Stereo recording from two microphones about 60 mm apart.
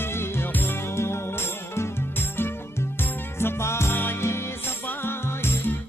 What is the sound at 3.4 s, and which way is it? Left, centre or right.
Music, left.